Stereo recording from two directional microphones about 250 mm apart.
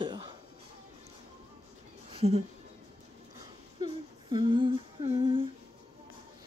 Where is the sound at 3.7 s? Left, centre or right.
Centre.